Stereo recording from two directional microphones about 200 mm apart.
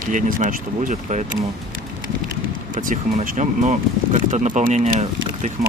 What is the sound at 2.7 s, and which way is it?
Speech, 40° right (ahead or behind).